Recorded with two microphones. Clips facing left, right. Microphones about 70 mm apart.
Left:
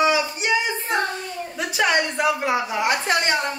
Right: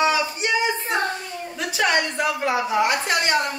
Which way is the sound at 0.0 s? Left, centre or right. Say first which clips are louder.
Left 1 dB; centre.